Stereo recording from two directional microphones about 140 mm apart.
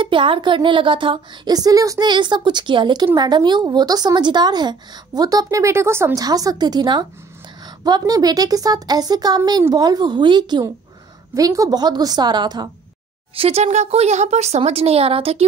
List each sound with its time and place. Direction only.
0.0 s a woman's voice: 35° right (ahead or behind)
13.3 s speech: 45° right (ahead or behind)